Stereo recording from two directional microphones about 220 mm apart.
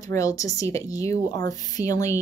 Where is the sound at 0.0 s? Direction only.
15° left (ahead or behind).